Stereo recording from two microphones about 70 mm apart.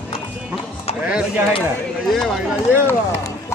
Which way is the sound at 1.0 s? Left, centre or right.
Right.